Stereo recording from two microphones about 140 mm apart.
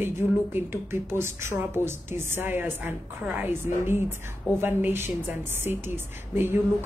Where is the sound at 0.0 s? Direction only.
15° right (ahead or behind).